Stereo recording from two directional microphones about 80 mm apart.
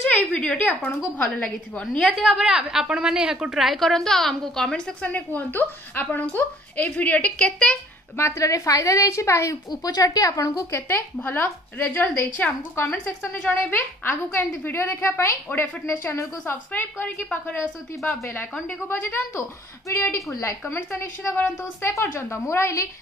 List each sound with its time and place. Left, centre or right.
0.1 s a woman's voice: centre
2.0 s a woman's voice: centre
5.1 s a woman's voice: left
8.2 s a woman's voice: left
9.7 s speech: left
10.7 s a woman's voice: left
12.7 s a woman's voice: left
17.0 s a woman's voice: centre
17.6 s a woman's voice: left
19.9 s a woman's voice: left
20.6 s a woman's voice: left